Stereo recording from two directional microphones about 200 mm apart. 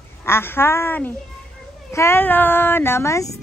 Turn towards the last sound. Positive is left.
turn(degrees=15)  # may be behind; listen again after turning